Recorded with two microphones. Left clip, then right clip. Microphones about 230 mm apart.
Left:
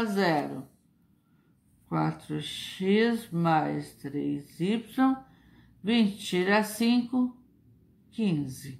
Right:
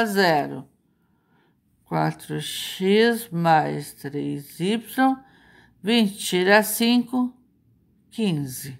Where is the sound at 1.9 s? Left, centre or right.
Right.